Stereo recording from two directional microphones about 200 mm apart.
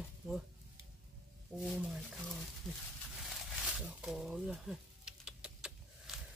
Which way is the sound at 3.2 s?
Centre (ahead or behind).